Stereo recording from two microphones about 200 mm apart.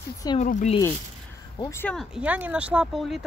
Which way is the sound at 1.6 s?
15° left (ahead or behind).